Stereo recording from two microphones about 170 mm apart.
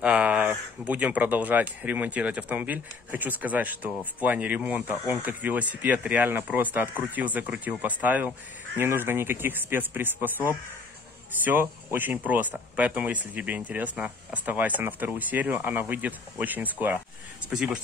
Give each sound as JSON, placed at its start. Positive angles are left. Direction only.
{"t": 0.0, "sound": "speech", "side_deg": -5}